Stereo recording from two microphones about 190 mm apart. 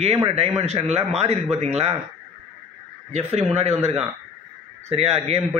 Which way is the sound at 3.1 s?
35° right (ahead or behind).